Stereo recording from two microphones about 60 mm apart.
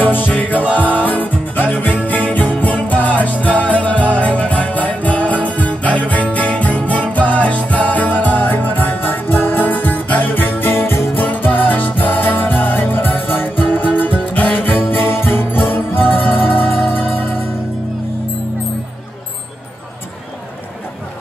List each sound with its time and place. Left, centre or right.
0.0 s music: left
11.1 s music: left